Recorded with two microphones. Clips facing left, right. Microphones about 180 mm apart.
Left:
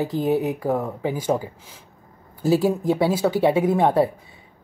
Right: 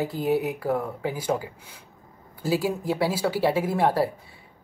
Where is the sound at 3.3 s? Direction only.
20° left (ahead or behind).